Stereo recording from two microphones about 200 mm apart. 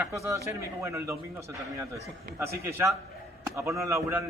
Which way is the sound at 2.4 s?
15° right (ahead or behind).